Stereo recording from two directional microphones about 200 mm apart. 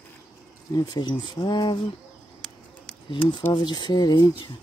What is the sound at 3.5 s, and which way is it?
Speech, 20° left (ahead or behind).